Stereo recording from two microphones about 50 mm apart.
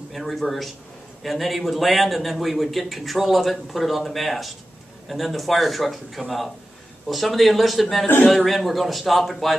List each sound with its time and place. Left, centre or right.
0.1 s a man's voice: centre